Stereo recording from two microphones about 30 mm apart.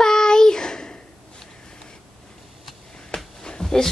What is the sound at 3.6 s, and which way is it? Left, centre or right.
Dog, centre.